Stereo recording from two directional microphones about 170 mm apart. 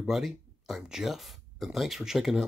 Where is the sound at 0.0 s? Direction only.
Centre (ahead or behind).